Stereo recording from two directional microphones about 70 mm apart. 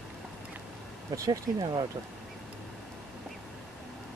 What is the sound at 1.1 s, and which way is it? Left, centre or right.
Speech, right.